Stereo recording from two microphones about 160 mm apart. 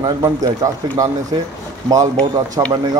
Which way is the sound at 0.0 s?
25° right (ahead or behind).